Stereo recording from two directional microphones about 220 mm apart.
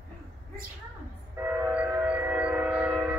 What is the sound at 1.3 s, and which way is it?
Train, 10° right (ahead or behind).